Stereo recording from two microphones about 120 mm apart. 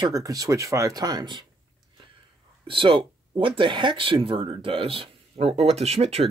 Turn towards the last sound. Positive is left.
turn(degrees=-60)  # may be behind; listen again after turning